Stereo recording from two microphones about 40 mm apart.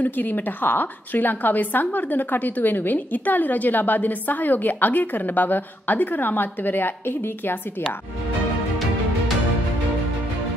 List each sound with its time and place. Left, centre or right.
0.0 s a woman's voice: left